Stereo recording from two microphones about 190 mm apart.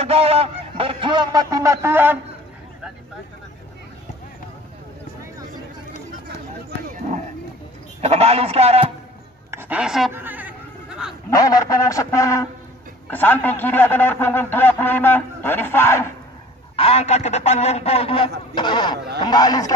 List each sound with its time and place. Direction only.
0.0 s speech: 30° right (ahead or behind); by 2.1 s 10° right (ahead or behind)
8.0 s a man's voice: 35° right (ahead or behind)
9.5 s speech: 10° right (ahead or behind)
10.1 s a sound: 10° right (ahead or behind)
11.2 s a man's voice: 20° left (ahead or behind)
16.7 s a man's voice: 35° left (ahead or behind)